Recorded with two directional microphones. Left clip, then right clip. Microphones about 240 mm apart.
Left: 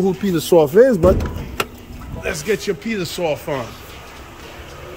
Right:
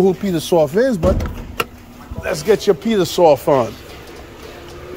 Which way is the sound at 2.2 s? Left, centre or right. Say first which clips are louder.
Right 6 dB; centre.